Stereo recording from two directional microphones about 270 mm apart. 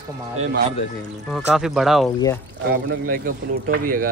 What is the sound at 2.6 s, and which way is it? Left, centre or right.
A man's voice, right.